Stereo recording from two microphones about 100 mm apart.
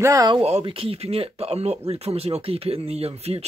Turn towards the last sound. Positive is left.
turn(degrees=-90)